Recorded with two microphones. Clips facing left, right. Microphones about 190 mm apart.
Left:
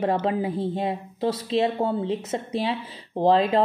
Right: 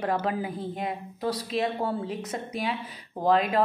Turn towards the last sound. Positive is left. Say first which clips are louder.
# left 4 dB
turn(degrees=30)  # may be behind; listen again after turning